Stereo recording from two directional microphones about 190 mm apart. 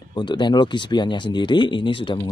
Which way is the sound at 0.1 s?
25° left (ahead or behind).